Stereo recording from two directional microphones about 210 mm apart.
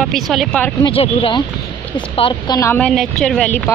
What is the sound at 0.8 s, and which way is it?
Speech, 25° left (ahead or behind).